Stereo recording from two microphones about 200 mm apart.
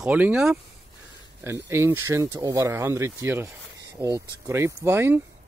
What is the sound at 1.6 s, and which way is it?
Speech, 10° right (ahead or behind).